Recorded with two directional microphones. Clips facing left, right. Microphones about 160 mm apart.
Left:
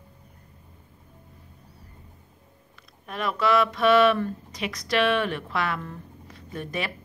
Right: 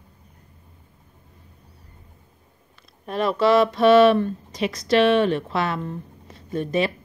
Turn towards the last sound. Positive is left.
turn(degrees=-25)  # may be behind; listen again after turning